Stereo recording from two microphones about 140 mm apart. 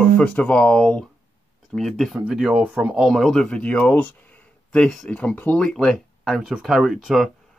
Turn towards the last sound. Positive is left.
turn(degrees=0)  # may be behind; listen again after turning